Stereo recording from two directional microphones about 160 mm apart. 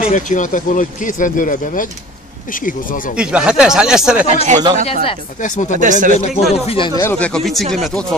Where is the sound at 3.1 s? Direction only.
5° right (ahead or behind).